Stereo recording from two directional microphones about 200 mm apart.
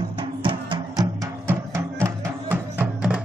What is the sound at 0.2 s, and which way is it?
Music, 25° right (ahead or behind).